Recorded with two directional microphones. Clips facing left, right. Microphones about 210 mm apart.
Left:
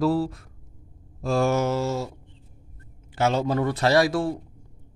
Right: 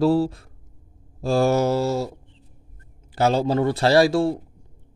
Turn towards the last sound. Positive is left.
turn(degrees=-30)  # may be behind; listen again after turning